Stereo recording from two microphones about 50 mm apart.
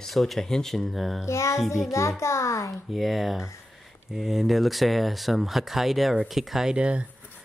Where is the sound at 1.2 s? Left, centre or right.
Left.